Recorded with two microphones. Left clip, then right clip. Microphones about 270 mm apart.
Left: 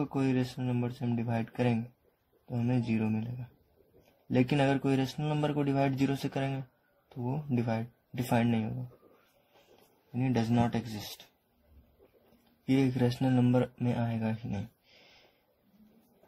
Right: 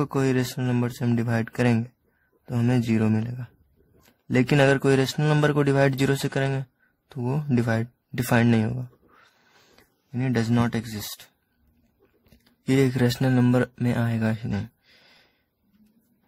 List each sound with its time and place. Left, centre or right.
0.0 s speech: right
4.3 s speech: right
10.1 s speech: right
12.7 s speech: right